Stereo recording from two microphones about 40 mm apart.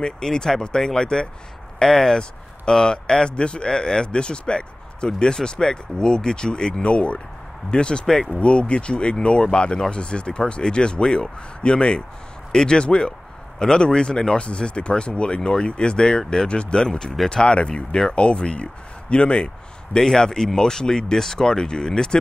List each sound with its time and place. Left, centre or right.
0.0 s speech: centre
1.8 s speech: centre
8.4 s speech: left
20.1 s speech: centre